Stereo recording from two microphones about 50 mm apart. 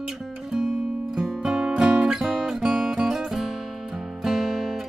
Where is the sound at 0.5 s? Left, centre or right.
Centre.